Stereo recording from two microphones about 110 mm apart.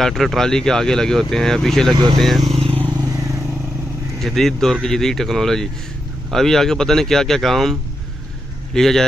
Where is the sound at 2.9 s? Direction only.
30° right (ahead or behind).